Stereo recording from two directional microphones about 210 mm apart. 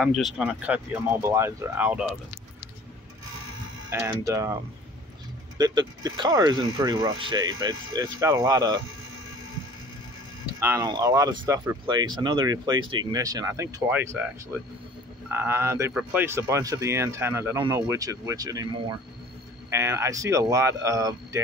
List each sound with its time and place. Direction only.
0.0 s speech: centre (ahead or behind)
3.9 s speech: 15° right (ahead or behind)
5.6 s speech: 20° right (ahead or behind)
10.6 s speech: 15° right (ahead or behind)